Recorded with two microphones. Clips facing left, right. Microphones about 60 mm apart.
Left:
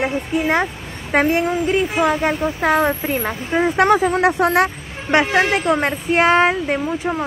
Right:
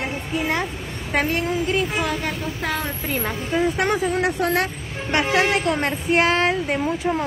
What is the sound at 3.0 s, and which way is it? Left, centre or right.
Speech, centre.